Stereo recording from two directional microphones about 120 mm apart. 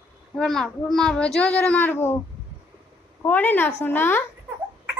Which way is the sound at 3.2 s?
15° left (ahead or behind).